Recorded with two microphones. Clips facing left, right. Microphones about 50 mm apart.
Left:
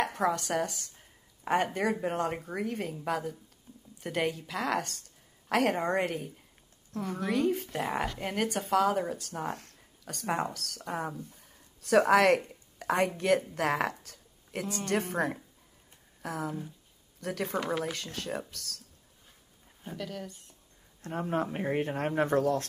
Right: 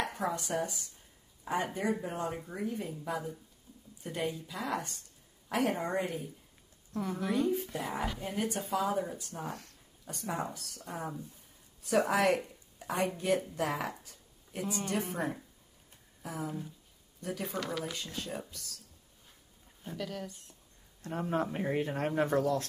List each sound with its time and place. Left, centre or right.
0.0 s speech: left
3.7 s a sound: left
4.0 s speech: left
7.0 s speech: centre
7.2 s speech: left
9.5 s speech: left
10.0 s speech: left
14.0 s a sound: left
14.9 s speech: left
17.6 s speech: left
17.9 s speech: left
20.0 s speech: centre
21.0 s speech: left